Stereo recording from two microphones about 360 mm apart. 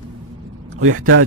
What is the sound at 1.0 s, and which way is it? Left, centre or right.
Speech, right.